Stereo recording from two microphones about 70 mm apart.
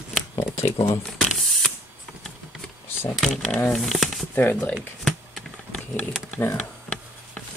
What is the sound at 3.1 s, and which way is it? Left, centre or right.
Speech, centre.